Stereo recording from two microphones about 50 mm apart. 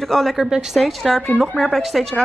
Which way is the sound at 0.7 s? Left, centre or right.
Centre.